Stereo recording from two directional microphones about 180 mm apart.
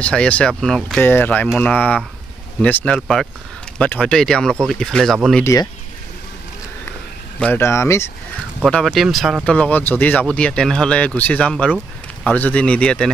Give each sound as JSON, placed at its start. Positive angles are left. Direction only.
{"t": 0.0, "sound": "speech", "side_deg": 5}
{"t": 5.4, "sound": "speech", "side_deg": 15}
{"t": 7.3, "sound": "speech", "side_deg": 10}
{"t": 8.5, "sound": "speech", "side_deg": 0}